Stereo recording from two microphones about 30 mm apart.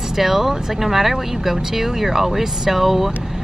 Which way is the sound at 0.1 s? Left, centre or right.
Centre.